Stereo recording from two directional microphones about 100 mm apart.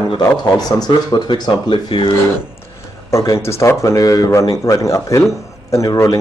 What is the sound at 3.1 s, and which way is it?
Speech, 30° left (ahead or behind).